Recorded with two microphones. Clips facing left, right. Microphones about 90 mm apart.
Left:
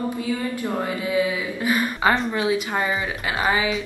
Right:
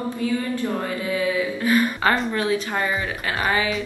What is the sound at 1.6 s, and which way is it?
Speech, 15° left (ahead or behind).